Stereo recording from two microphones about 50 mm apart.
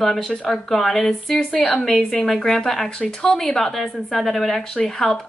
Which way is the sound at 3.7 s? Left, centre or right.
Centre.